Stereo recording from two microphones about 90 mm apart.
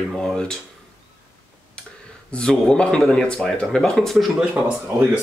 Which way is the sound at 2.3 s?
10° left (ahead or behind).